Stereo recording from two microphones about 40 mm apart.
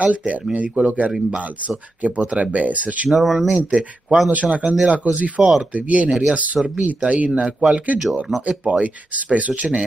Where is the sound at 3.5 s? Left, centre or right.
Right.